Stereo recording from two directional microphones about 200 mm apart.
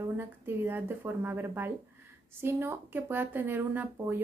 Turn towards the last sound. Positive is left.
turn(degrees=-10)  # may be behind; listen again after turning